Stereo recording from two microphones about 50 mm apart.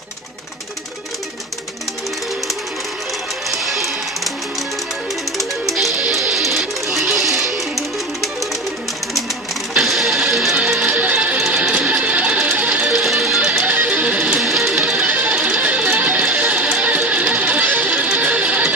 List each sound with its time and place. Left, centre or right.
3.4 s music: centre
6.3 s music: centre
9.8 s music: centre
10.8 s music: right
11.3 s music: centre
11.7 s music: right
12.8 s music: centre
13.6 s music: right